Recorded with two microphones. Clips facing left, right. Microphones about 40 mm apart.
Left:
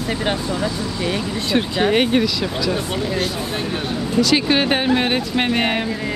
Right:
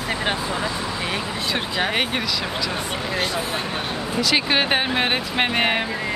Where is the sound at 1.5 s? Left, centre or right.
Centre.